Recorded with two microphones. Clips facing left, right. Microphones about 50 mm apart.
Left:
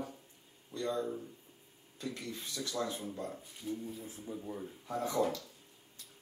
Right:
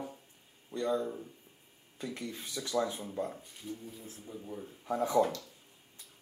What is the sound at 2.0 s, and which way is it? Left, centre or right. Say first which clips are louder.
Speech: right 1 dB; centre.